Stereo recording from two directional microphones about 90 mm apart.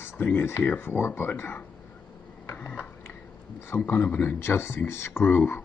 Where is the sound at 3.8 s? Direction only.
15° left (ahead or behind).